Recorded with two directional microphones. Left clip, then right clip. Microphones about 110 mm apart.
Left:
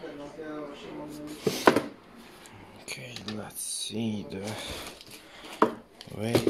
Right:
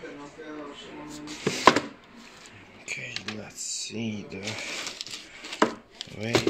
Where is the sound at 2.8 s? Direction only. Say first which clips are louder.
Right 6 dB; 20° left (ahead or behind).